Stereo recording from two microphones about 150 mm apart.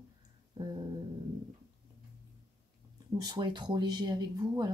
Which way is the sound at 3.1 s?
25° right (ahead or behind).